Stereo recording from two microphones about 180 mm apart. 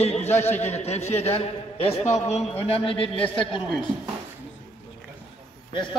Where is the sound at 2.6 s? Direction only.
30° left (ahead or behind).